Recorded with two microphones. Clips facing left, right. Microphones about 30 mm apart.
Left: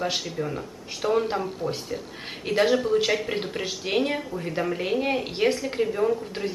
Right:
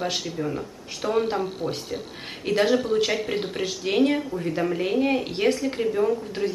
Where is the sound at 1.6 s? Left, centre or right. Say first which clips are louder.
Even; left.